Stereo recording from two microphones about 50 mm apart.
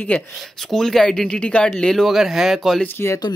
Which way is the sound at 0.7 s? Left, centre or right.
Centre.